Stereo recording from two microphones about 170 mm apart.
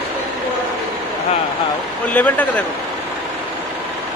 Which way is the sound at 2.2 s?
10° left (ahead or behind).